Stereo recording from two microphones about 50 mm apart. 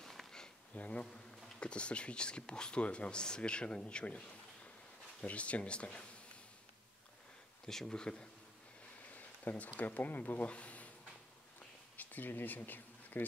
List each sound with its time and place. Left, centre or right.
0.7 s speech: left
5.2 s speech: left
7.6 s speech: centre
9.1 s a sound: left
9.8 s speech: left
12.0 s a sound: left